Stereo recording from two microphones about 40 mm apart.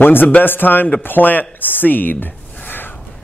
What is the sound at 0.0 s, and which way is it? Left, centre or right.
Chopping, left.